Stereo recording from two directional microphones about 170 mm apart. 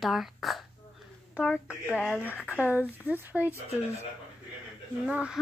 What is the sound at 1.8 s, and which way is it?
Speech, 10° left (ahead or behind).